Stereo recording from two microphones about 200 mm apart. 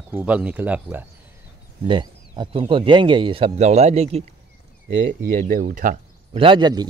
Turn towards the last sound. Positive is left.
turn(degrees=-20)  # may be behind; listen again after turning